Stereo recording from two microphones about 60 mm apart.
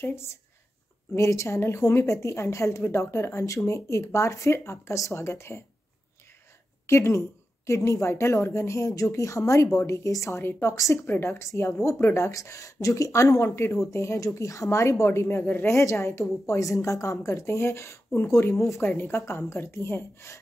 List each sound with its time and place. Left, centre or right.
0.0 s a woman's voice: left
1.1 s a woman's voice: left
3.4 s a woman's voice: left
6.9 s a woman's voice: left
11.1 s a woman's voice: left
12.4 s speech: left
15.2 s speech: left
15.8 s a woman's voice: left